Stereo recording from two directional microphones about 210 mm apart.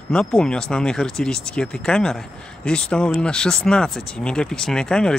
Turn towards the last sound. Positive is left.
turn(degrees=5)  # may be behind; listen again after turning